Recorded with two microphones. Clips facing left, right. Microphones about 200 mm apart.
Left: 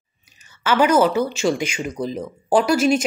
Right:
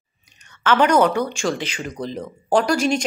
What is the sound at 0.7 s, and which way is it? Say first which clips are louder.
Speech: even; 5° left (ahead or behind).